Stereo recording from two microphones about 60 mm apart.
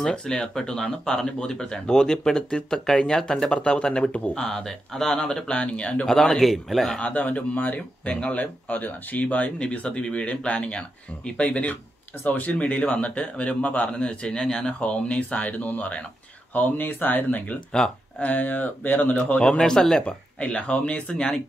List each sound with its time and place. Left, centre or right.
0.0 s speech: centre
4.4 s speech: centre
6.0 s a man's voice: centre
7.1 s speech: left
19.6 s speech: centre